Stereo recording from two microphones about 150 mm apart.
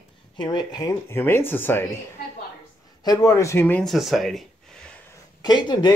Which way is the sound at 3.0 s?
25° left (ahead or behind).